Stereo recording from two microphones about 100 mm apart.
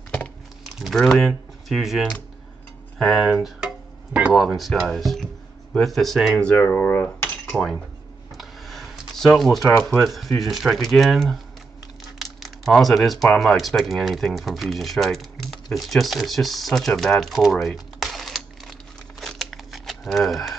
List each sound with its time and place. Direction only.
0.7 s speech: centre (ahead or behind)
6.4 s speech: 10° left (ahead or behind)
7.5 s speech: centre (ahead or behind)
8.4 s computer keyboard: centre (ahead or behind)
9.8 s speech: centre (ahead or behind)
12.2 s crumpling: centre (ahead or behind)
13.4 s speech: centre (ahead or behind)